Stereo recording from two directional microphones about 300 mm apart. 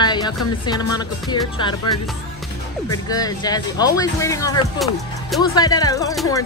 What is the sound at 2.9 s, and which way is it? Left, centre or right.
Speech, centre.